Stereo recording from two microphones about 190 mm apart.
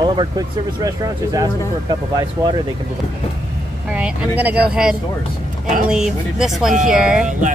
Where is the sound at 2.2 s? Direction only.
20° right (ahead or behind).